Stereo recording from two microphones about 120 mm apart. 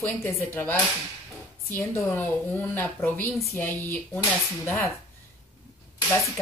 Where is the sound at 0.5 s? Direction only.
15° left (ahead or behind).